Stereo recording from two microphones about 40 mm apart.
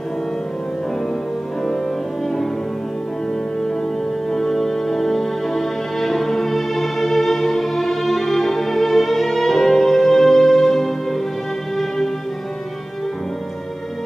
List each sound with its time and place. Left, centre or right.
4.3 s music: centre